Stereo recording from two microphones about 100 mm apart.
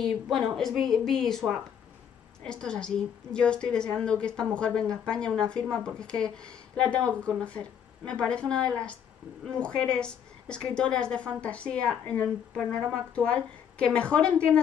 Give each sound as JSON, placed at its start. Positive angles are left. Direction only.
{"t": 0.0, "sound": "a woman's voice", "side_deg": 5}
{"t": 2.4, "sound": "a woman's voice", "side_deg": 10}